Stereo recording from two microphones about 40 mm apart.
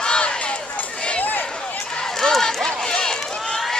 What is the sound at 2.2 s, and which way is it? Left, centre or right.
Run, centre.